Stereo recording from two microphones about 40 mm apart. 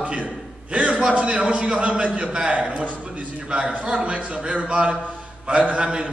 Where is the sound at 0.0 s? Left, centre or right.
Right.